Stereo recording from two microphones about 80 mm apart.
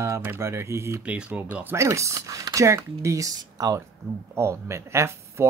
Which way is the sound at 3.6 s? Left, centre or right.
Right.